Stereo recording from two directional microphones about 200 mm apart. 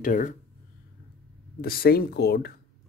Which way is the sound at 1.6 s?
50° left (ahead or behind).